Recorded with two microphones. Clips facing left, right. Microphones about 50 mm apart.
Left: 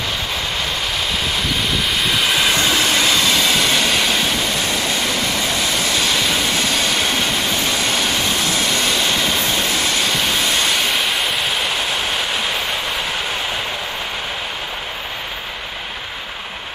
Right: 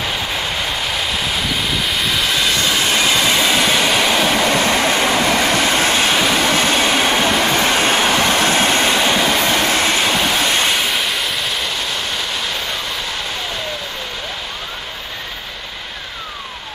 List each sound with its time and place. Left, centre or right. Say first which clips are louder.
1.8 s vehicle: even; centre
3.1 s train: right 1 dB; centre
4.4 s train: right 5 dB; right
7.2 s vehicle: right 5 dB; right
8.2 s train: right 5 dB; right
9.4 s vehicle: right 4 dB; right
10.2 s train: right 2 dB; right
10.7 s train: even; centre